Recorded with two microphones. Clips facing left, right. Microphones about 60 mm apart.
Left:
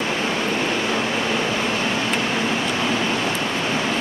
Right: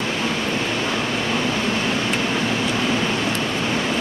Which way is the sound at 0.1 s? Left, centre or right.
Left.